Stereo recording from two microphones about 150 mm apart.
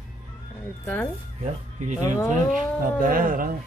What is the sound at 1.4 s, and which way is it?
Speech, 55° right (ahead or behind).